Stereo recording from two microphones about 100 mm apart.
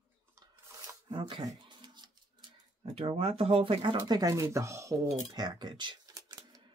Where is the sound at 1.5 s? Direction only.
50° right (ahead or behind).